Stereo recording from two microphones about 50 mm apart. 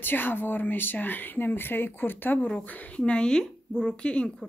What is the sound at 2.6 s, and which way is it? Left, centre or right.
Speech, left.